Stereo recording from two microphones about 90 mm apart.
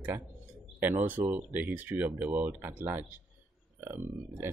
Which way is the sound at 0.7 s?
20° right (ahead or behind).